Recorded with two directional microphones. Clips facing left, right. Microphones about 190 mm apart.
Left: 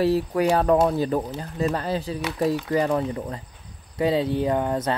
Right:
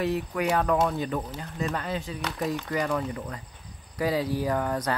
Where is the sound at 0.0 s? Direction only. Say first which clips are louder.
Left 6 dB; 35° left (ahead or behind).